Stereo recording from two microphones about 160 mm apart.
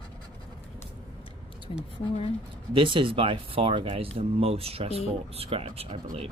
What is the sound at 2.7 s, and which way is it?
Speech, 30° right (ahead or behind).